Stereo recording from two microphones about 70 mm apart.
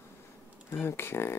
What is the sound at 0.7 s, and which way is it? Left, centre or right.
Speech, left.